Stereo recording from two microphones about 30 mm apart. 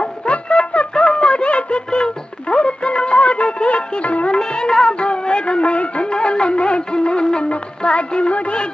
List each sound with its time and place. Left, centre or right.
0.0 s a sound: left
3.4 s music: left
4.3 s music: left
4.9 s music: left